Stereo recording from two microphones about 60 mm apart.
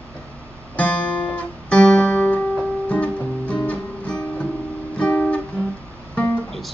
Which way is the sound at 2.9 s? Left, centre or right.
Left.